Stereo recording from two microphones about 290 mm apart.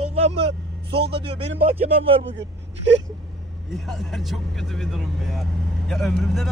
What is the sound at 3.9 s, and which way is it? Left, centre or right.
Speech, centre.